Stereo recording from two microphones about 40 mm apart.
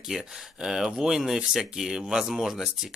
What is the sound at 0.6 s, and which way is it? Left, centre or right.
A man's voice, centre.